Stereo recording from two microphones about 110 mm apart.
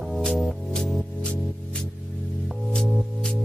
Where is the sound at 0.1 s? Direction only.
Centre (ahead or behind).